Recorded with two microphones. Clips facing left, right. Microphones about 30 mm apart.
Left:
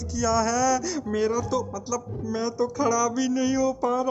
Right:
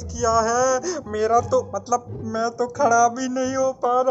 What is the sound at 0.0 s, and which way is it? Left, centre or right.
Speech, left.